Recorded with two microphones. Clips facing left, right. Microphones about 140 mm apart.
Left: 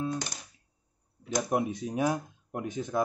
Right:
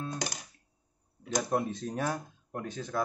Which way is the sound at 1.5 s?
15° left (ahead or behind).